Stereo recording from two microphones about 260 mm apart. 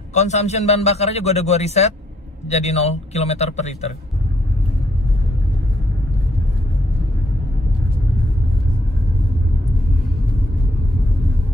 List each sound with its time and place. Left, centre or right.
0.1 s a man's voice: left